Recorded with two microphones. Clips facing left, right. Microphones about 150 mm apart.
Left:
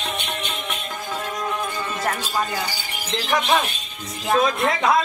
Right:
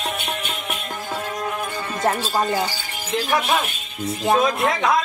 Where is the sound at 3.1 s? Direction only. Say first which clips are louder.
Right 2 dB; 10° right (ahead or behind).